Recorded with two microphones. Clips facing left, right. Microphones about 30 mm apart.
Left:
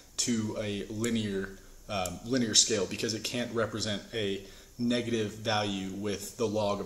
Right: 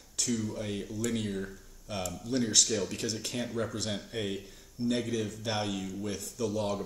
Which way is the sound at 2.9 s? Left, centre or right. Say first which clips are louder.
Left 2 dB; centre.